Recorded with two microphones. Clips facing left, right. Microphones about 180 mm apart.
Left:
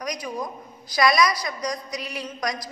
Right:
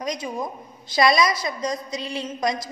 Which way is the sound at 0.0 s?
25° right (ahead or behind).